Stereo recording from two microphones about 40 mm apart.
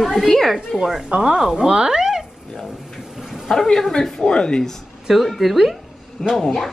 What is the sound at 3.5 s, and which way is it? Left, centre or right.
A woman's voice, centre.